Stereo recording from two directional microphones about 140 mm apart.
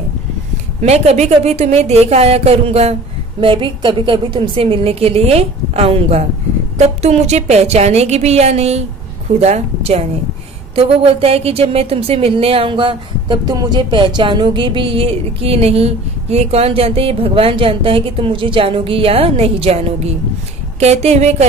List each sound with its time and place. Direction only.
0.8 s speech: 50° right (ahead or behind)